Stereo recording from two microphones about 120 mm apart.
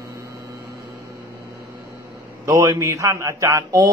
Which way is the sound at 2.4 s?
25° right (ahead or behind).